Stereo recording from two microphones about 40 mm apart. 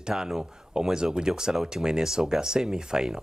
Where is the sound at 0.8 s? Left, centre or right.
Centre.